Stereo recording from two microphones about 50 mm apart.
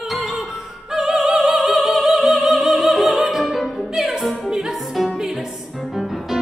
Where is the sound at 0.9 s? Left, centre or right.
Centre.